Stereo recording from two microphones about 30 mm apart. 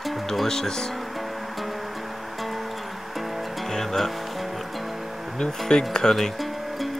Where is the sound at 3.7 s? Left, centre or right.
Centre.